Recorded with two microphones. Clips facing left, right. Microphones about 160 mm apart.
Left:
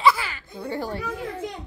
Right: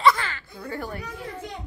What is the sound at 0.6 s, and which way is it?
Speech, 25° left (ahead or behind).